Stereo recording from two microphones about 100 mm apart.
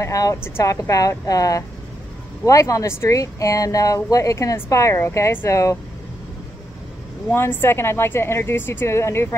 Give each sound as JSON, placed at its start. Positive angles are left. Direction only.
{"t": 0.0, "sound": "speech", "side_deg": 35}
{"t": 7.3, "sound": "speech", "side_deg": 20}